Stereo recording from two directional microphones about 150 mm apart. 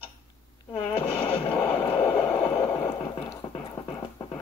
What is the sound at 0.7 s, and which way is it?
Artillery fire, 35° left (ahead or behind).